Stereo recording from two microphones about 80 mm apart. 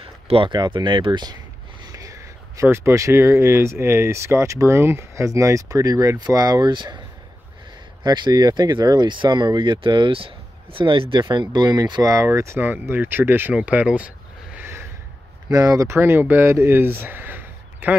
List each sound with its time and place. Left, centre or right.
0.4 s speech: right
1.9 s speech: right
6.7 s speech: right
8.0 s speech: right
12.3 s speech: right
12.5 s speech: right
13.6 s a sound: centre
15.5 s speech: right
15.9 s speech: right